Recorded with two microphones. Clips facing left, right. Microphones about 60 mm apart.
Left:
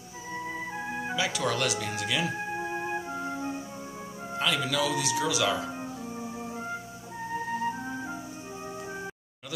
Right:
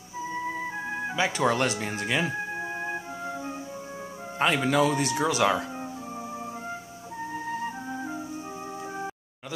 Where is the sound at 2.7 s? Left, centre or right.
Centre.